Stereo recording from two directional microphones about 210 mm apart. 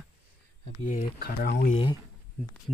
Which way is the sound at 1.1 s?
50° left (ahead or behind).